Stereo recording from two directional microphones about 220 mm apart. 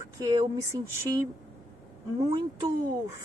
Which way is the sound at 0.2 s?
15° right (ahead or behind).